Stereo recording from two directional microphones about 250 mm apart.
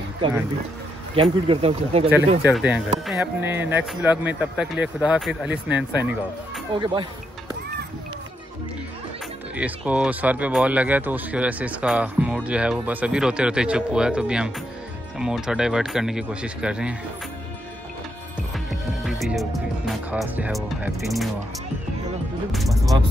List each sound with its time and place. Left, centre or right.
1.1 s speech: right
2.4 s speech: centre
6.8 s speech: centre
9.6 s speech: centre
18.7 s music: centre
20.1 s speech: centre
22.5 s speech: centre